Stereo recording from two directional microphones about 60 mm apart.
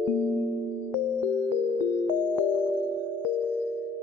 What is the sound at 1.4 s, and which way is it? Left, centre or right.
Music, right.